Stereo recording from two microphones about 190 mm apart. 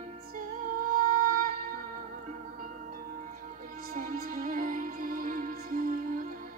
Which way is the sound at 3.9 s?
45° right (ahead or behind).